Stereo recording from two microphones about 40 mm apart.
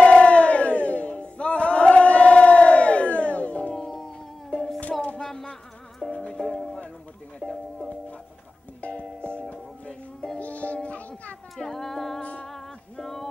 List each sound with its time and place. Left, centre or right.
0.0 s battle cry: left
3.7 s music: centre
4.5 s music: left
5.2 s music: centre
6.5 s music: centre
7.4 s music: left
8.8 s music: left
10.4 s music: left
11.5 s a sound: centre
12.2 s music: left
12.4 s music: centre